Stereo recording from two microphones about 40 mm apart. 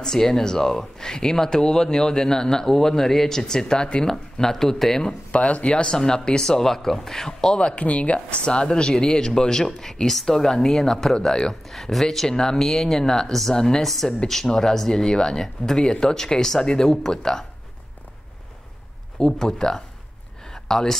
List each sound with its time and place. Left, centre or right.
0.0 s speech: centre
4.1 s speech: centre
5.0 s speech: left
7.8 s speech: left; by 17.5 s centre
19.1 s speech: centre
20.4 s a sound: centre